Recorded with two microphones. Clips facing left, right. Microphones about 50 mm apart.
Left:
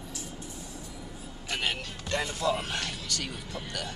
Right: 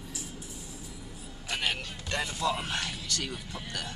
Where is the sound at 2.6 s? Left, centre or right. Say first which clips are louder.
Even; centre.